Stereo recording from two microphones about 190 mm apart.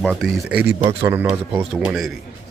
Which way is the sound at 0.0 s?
5° left (ahead or behind).